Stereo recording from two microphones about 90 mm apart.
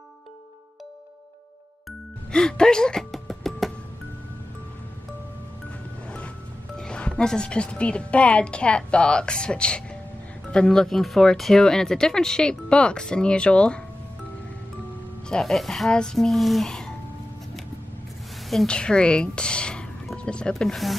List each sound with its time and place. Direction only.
1.9 s music: 10° left (ahead or behind)
6.0 s music: 15° left (ahead or behind)
6.8 s speech: 10° left (ahead or behind)
15.2 s speech: 5° left (ahead or behind)
18.5 s a woman's voice: 5° left (ahead or behind)